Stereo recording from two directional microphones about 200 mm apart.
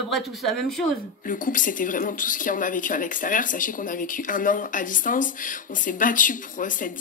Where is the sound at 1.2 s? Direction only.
40° left (ahead or behind).